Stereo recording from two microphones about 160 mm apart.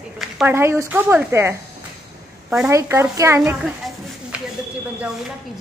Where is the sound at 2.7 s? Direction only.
15° right (ahead or behind).